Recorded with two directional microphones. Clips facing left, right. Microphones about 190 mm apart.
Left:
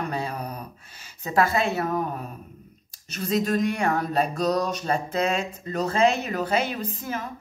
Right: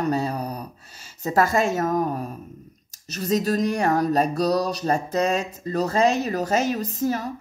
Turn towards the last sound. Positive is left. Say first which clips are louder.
# right 6 dB
turn(degrees=-40)  # may be behind; listen again after turning